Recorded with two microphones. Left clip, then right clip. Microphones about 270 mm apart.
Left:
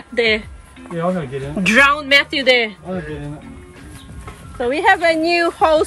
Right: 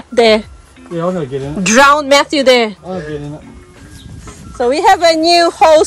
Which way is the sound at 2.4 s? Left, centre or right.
Right.